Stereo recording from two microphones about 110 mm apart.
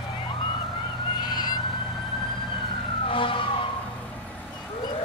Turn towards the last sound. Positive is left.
turn(degrees=50)  # may be behind; listen again after turning